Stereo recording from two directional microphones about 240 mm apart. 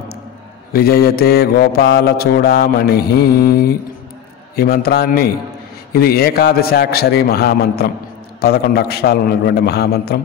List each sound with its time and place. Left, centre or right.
0.7 s mantra: left